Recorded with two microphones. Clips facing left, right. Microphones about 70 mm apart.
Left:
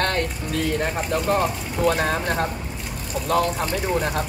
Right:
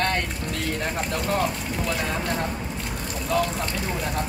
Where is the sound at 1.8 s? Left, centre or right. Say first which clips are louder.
Left 8 dB; left.